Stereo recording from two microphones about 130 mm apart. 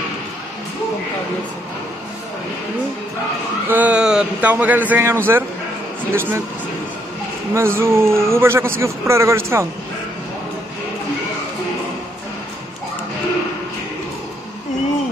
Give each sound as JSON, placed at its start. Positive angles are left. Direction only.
{"t": 3.6, "sound": "a man's voice", "side_deg": -15}
{"t": 7.5, "sound": "a man's voice", "side_deg": -20}